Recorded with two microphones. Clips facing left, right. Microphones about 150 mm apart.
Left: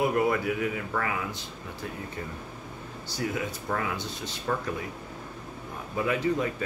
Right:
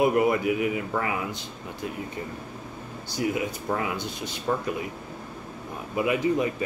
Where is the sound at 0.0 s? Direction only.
20° right (ahead or behind).